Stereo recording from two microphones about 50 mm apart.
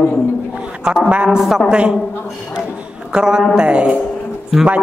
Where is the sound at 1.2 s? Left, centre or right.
Centre.